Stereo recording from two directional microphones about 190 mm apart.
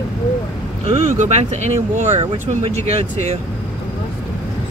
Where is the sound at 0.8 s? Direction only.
40° right (ahead or behind).